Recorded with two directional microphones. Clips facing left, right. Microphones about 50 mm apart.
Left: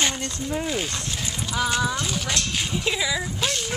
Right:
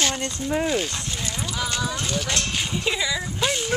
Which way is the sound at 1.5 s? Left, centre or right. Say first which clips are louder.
Left 5 dB; centre.